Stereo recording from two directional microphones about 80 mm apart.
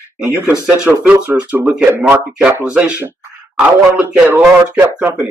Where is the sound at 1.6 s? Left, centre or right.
Centre.